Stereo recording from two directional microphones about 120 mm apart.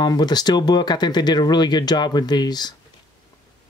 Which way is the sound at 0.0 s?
35° left (ahead or behind).